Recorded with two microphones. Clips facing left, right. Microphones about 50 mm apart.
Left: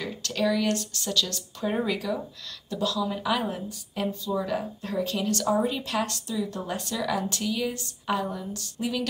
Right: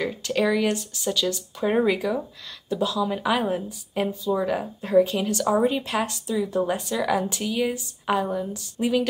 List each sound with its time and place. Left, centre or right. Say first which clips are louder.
0.0 s a woman's voice: right 4 dB; centre